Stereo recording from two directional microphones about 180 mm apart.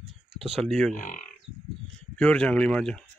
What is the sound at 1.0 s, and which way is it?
Speech, 45° left (ahead or behind).